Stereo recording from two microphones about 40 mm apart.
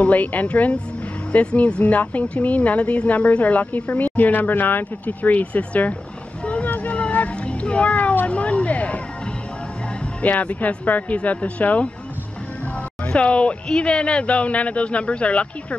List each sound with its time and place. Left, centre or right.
0.0 s a woman's voice: left
1.8 s a woman's voice: left
6.4 s boat: left
6.9 s cat: left
8.3 s vehicle: left
10.2 s a woman's voice: left
13.1 s a woman's voice: left